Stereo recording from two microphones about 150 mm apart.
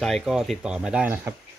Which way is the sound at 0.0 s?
Centre (ahead or behind).